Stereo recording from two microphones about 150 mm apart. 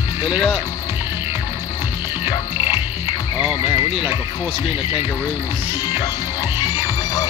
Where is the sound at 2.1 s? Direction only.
25° left (ahead or behind).